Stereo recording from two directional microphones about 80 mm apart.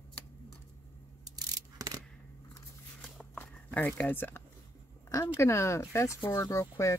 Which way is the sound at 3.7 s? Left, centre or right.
Left.